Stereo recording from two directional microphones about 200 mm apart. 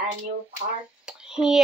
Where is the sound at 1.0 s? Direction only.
5° right (ahead or behind).